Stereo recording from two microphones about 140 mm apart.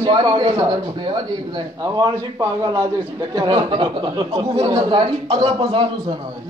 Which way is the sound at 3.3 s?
35° right (ahead or behind).